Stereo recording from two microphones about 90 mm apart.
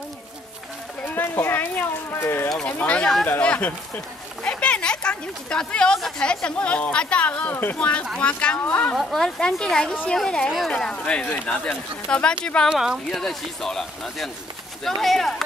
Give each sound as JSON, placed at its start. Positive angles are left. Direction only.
{"t": 1.0, "sound": "speech", "side_deg": 25}
{"t": 2.8, "sound": "speech", "side_deg": 15}
{"t": 4.4, "sound": "a sound", "side_deg": 10}
{"t": 5.9, "sound": "speech", "side_deg": 10}
{"t": 8.9, "sound": "speech", "side_deg": 5}
{"t": 12.6, "sound": "speech", "side_deg": -5}